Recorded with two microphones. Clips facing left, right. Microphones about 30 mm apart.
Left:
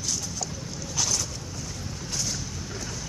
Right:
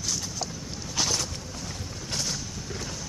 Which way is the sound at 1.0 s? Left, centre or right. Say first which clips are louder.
Right 1 dB; right.